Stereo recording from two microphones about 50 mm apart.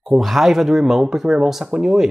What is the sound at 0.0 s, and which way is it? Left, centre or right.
Speech, centre.